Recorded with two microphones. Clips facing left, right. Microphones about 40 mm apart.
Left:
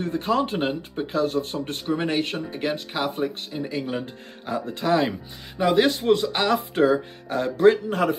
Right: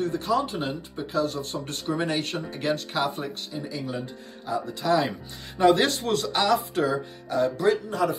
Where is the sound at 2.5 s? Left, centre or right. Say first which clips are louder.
Even; centre.